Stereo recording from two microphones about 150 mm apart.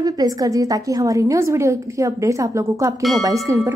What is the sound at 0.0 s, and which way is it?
A woman's voice, 25° right (ahead or behind).